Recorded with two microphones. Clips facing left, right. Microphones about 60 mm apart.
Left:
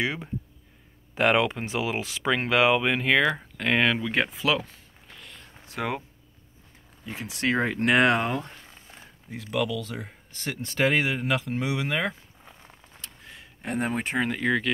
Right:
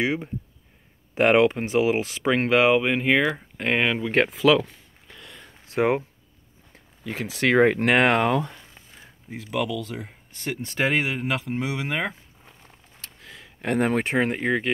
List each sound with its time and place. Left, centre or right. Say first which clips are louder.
1.1 s speech: right 4 dB; right
2.8 s speech: right 1 dB; centre
3.5 s speech: right 2 dB; right
3.8 s speech: even; centre
5.8 s speech: right 9 dB; right
7.1 s speech: right 5 dB; right
8.3 s speech: right 7 dB; right
9.3 s speech: right 1 dB; centre
13.2 s a sound: right 7 dB; right
14.3 s speech: right 1 dB; right